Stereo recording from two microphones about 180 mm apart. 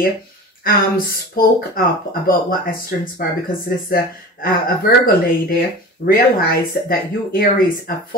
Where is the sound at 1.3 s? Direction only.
55° left (ahead or behind).